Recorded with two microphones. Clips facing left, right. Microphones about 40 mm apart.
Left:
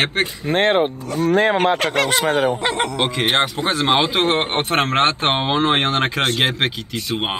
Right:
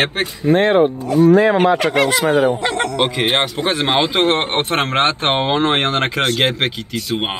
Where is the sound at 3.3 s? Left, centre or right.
Right.